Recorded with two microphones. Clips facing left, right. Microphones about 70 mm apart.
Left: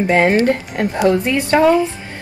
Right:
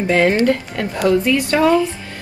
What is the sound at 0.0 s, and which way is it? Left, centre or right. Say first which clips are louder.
Speech: left 1 dB; left.